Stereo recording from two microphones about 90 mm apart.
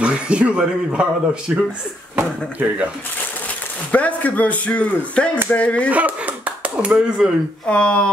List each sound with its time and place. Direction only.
0.0 s speech: 15° right (ahead or behind)
3.9 s speech: 15° left (ahead or behind)
5.9 s speech: 15° right (ahead or behind)
7.6 s speech: 10° left (ahead or behind)